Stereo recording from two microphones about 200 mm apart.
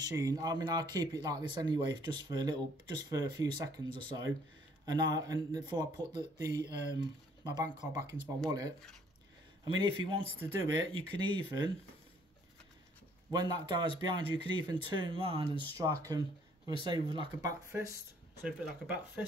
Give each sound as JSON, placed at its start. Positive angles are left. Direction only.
{"t": 0.1, "sound": "speech", "side_deg": -20}
{"t": 13.3, "sound": "speech", "side_deg": -20}